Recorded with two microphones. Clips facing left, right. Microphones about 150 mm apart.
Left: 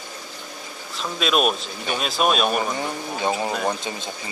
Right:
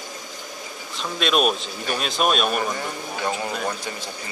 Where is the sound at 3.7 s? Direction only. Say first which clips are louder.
Left 3 dB; 20° left (ahead or behind).